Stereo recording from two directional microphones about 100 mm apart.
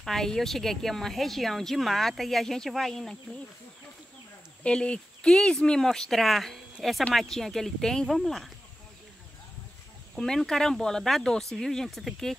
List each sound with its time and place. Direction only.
0.0 s a woman's voice: 5° left (ahead or behind)
4.6 s a woman's voice: 10° left (ahead or behind)
10.1 s a woman's voice: 5° left (ahead or behind)